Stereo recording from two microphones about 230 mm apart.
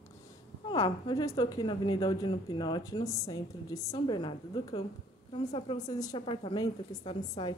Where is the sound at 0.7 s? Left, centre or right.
Left.